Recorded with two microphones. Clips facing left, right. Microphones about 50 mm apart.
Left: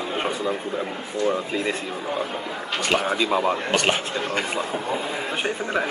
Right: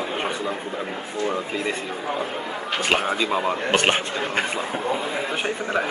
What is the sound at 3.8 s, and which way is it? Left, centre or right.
Speech, right.